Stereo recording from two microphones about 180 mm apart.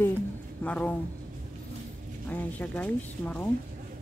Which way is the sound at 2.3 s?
10° left (ahead or behind).